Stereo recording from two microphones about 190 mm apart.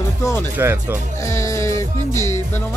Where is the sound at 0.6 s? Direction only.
10° right (ahead or behind).